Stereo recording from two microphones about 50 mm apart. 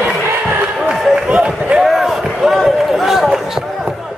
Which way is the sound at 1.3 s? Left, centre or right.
Centre.